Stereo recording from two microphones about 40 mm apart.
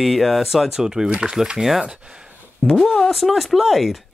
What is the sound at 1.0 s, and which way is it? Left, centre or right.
Speech, right.